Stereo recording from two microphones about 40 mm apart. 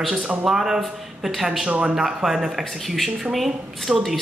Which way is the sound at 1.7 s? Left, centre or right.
Right.